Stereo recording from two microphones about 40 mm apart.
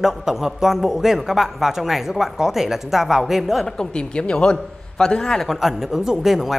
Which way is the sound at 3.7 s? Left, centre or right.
Left.